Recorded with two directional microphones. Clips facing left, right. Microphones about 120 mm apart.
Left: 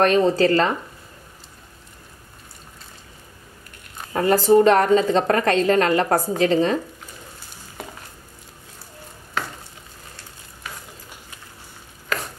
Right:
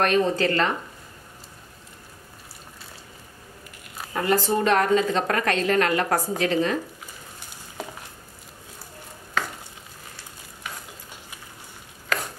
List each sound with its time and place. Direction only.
0.0 s a woman's voice: 35° left (ahead or behind)
4.1 s a woman's voice: 30° left (ahead or behind)